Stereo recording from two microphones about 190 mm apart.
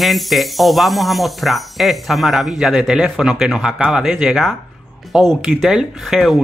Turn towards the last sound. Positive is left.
turn(degrees=0)  # may be behind; listen again after turning